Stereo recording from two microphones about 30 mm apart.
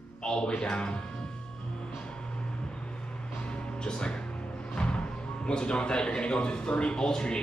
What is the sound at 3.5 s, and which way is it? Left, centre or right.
Music, left.